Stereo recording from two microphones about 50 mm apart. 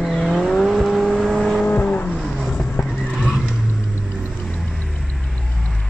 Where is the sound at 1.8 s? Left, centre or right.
Left.